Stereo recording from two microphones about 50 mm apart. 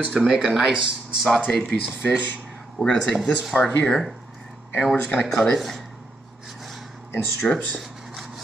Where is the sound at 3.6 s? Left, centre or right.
Left.